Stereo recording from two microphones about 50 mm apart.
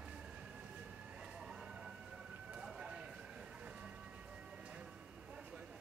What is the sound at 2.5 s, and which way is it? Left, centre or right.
Siren, centre.